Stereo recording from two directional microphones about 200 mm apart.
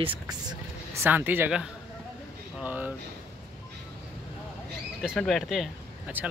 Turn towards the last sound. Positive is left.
turn(degrees=-5)  # may be behind; listen again after turning